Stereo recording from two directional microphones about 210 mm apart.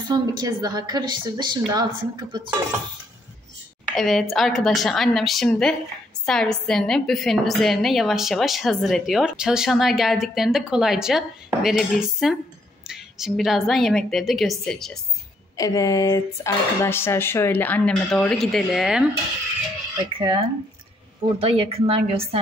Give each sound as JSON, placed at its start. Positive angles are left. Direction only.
{"t": 0.1, "sound": "a woman's voice", "side_deg": -20}
{"t": 3.9, "sound": "a woman's voice", "side_deg": 0}
{"t": 15.5, "sound": "speech", "side_deg": 15}
{"t": 20.1, "sound": "a woman's voice", "side_deg": -25}